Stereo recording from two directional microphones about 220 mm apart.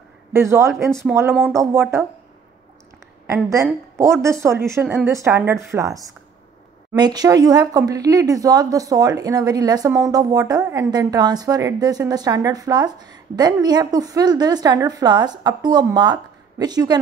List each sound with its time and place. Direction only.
0.3 s speech: 10° right (ahead or behind)
3.3 s speech: 15° right (ahead or behind)